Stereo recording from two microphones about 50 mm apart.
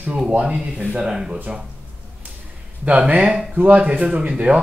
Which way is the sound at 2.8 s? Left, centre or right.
Right.